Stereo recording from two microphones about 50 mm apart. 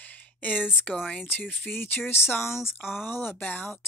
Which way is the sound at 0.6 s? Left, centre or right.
Centre.